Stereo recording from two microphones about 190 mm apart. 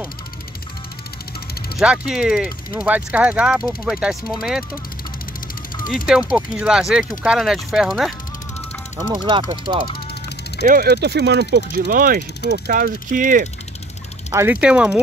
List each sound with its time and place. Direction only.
1.8 s speech: 5° right (ahead or behind)
5.8 s a sound: 45° left (ahead or behind)
6.3 s speech: 5° right (ahead or behind)
9.0 s speech: 25° right (ahead or behind)
10.6 s speech: 50° right (ahead or behind)
14.3 s speech: 10° right (ahead or behind)